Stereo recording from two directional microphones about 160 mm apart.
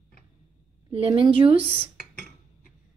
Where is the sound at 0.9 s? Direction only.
35° right (ahead or behind).